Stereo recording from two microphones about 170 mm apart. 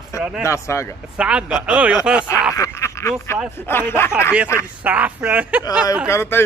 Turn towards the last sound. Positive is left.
turn(degrees=15)  # may be behind; listen again after turning